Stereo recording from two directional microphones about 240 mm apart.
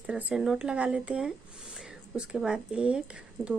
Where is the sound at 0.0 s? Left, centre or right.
Centre.